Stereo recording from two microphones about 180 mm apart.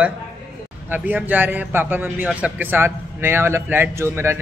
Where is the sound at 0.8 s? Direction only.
10° right (ahead or behind).